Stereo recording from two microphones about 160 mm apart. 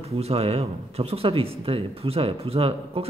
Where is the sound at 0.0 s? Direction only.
40° right (ahead or behind).